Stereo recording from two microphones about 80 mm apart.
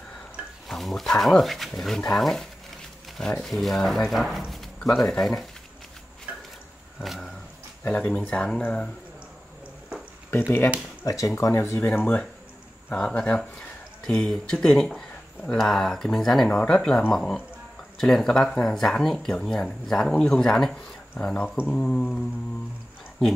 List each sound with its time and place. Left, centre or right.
0.7 s speech: centre
4.5 s a sound: centre
5.2 s speech: centre
7.0 s a sound: centre
7.8 s speech: centre
11.1 s speech: left
12.9 s speech: centre